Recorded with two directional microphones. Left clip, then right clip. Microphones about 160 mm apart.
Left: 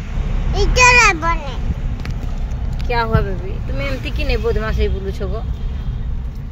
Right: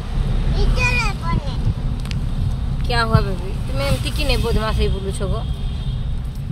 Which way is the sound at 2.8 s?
15° right (ahead or behind).